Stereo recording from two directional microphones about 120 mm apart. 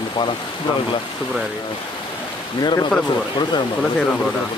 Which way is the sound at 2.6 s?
35° left (ahead or behind).